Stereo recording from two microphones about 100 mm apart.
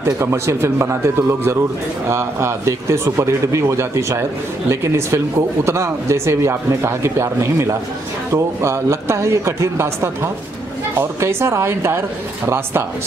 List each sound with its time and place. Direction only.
0.0 s speech: 25° right (ahead or behind)